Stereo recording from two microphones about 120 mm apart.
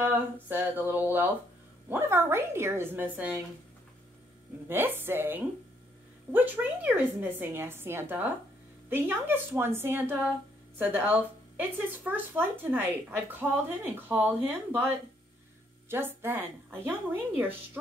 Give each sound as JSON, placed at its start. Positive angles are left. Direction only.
{"t": 0.0, "sound": "a sound", "side_deg": -15}
{"t": 1.9, "sound": "a woman's voice", "side_deg": -20}
{"t": 4.6, "sound": "a woman's voice", "side_deg": -20}